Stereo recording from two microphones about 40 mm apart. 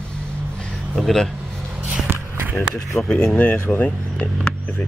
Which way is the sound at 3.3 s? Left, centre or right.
Left.